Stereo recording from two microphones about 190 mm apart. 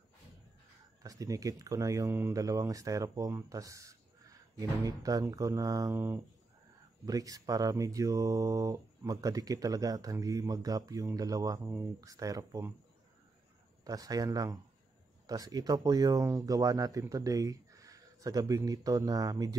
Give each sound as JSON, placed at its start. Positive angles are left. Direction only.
{"t": 1.0, "sound": "speech", "side_deg": -20}
{"t": 13.8, "sound": "speech", "side_deg": -20}